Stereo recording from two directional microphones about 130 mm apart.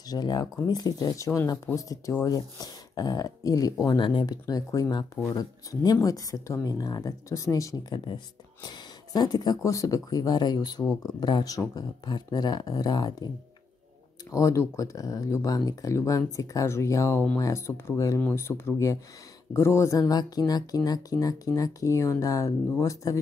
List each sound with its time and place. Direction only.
0.1 s speech: 30° left (ahead or behind)
14.3 s speech: 25° left (ahead or behind)